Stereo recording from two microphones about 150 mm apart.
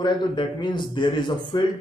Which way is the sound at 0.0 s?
30° left (ahead or behind).